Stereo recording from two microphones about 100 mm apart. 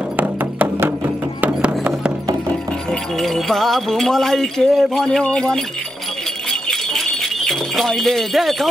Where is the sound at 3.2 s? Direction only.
Centre (ahead or behind).